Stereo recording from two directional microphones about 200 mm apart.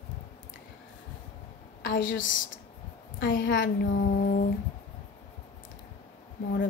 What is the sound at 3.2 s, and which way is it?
A child's voice, 45° left (ahead or behind).